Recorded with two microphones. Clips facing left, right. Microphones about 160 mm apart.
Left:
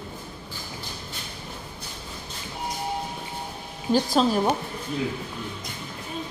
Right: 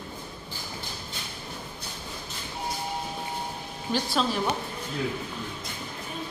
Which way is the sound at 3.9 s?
40° left (ahead or behind).